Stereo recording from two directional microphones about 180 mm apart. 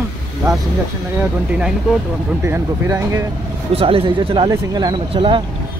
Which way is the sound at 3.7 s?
30° right (ahead or behind).